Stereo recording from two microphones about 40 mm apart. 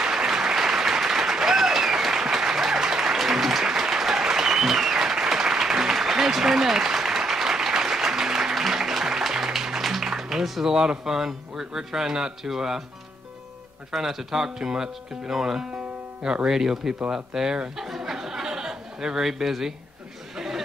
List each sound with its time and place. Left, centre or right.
0.0 s applause: centre
10.7 s speech: centre
13.9 s speech: centre
17.7 s a sound: centre
20.3 s chatter: centre